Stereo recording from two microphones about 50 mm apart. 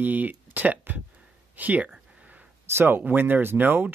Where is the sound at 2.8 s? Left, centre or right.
Right.